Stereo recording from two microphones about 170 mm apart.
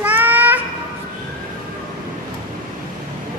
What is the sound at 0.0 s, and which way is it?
Child singing, 10° right (ahead or behind).